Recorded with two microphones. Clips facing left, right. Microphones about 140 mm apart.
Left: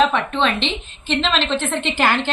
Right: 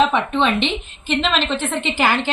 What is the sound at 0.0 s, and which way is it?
A woman's voice, 15° right (ahead or behind).